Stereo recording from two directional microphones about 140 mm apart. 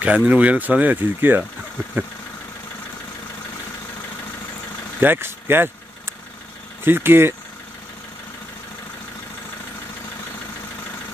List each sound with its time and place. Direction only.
0.0 s speech: 10° right (ahead or behind)
5.0 s vehicle: 15° right (ahead or behind)
6.8 s speech: 15° right (ahead or behind)